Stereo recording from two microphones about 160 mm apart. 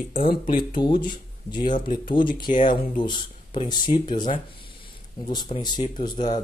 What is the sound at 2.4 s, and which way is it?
Speech, 55° left (ahead or behind).